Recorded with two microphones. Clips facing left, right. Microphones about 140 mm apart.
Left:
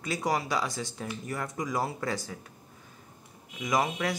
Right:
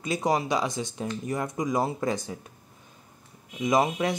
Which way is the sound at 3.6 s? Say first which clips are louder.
Right 5 dB; 25° right (ahead or behind).